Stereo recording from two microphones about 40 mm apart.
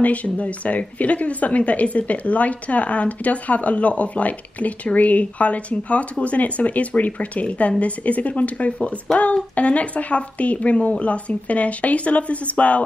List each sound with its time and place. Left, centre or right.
0.0 s speech: left